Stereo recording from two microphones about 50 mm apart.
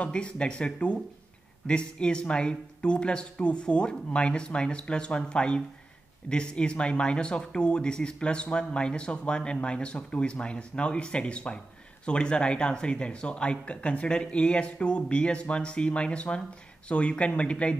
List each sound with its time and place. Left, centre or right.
0.0 s speech: left